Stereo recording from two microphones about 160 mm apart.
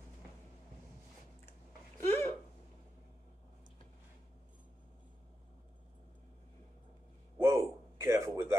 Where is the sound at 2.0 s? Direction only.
15° left (ahead or behind).